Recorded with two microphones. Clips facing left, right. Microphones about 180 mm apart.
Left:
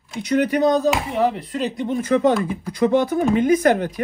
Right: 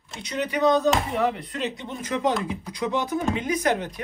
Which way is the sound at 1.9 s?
55° left (ahead or behind).